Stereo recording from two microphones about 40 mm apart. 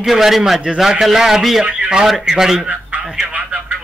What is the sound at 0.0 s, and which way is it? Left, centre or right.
A man's voice, centre.